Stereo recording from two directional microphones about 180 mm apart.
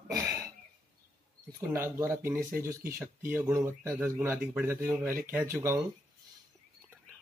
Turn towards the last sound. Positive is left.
turn(degrees=-15)  # may be behind; listen again after turning